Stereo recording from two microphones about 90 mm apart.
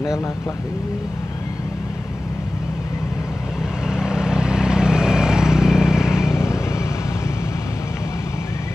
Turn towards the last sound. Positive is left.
turn(degrees=30)  # may be behind; listen again after turning